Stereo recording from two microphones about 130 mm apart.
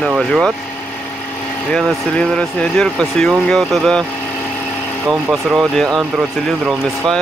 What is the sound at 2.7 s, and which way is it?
Speech, 5° left (ahead or behind).